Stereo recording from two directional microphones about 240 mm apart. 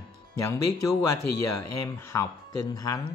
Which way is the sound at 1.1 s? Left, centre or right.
Left.